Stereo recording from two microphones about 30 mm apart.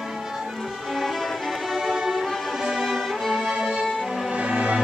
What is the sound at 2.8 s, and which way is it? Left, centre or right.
Violin, centre.